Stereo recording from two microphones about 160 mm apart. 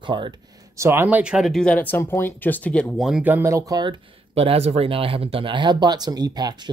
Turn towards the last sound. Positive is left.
turn(degrees=-25)  # may be behind; listen again after turning